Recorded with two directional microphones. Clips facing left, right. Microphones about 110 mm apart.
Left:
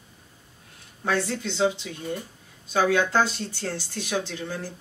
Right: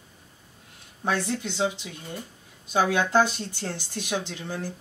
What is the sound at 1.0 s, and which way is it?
Speech, 15° right (ahead or behind).